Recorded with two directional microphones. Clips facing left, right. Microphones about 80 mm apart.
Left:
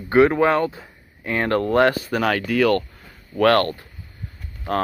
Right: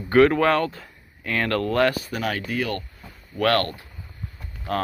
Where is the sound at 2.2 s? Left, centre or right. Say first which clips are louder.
Left 8 dB; left.